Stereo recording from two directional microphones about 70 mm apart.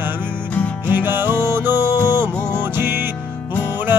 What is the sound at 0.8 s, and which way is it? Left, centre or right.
Music, right.